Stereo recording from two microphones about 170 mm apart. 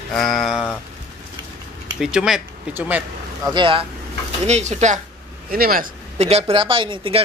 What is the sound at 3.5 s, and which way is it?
Speech, 30° right (ahead or behind).